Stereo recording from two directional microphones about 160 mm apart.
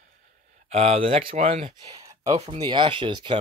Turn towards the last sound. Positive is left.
turn(degrees=-30)  # may be behind; listen again after turning